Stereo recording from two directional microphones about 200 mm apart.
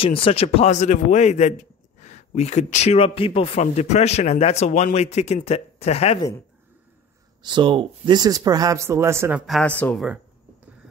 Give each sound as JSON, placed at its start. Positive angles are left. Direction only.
{"t": 0.0, "sound": "speech", "side_deg": 30}
{"t": 7.4, "sound": "speech", "side_deg": -25}
{"t": 9.5, "sound": "speech", "side_deg": 5}